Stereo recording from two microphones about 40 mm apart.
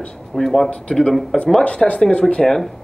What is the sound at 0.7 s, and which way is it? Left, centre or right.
Speech, left.